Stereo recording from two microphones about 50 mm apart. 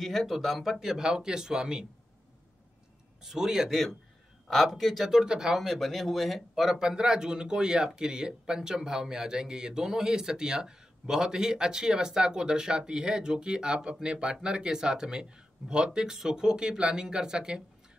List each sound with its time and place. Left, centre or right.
0.0 s speech: centre
0.7 s speech: centre
3.2 s speech: centre
4.6 s speech: centre
5.1 s speech: centre
5.7 s speech: centre